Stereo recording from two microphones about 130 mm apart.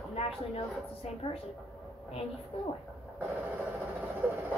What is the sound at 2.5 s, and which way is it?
Speech, 45° left (ahead or behind).